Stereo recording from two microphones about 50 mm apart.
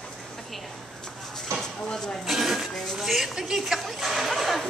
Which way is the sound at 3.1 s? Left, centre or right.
Centre.